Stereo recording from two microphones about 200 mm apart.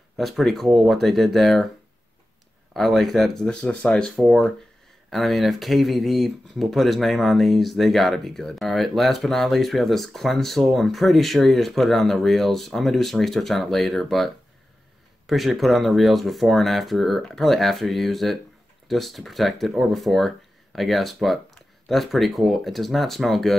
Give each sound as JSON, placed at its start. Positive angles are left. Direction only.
{"t": 0.2, "sound": "speech", "side_deg": 0}
{"t": 2.7, "sound": "speech", "side_deg": 0}